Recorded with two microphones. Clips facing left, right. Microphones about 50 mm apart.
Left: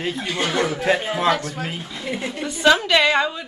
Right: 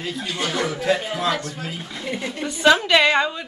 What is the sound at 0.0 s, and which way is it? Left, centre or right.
A man's voice, left.